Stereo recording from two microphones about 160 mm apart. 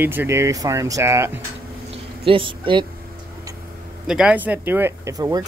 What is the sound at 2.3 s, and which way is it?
Speech, 30° right (ahead or behind).